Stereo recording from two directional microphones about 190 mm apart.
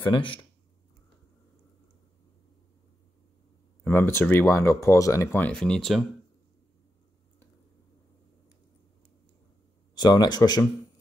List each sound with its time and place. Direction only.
0.0 s speech: 25° left (ahead or behind)
3.8 s speech: 10° left (ahead or behind)
9.9 s speech: 20° left (ahead or behind)